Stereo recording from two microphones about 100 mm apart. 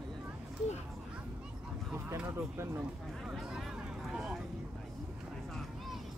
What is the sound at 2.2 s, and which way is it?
Speech, 25° right (ahead or behind).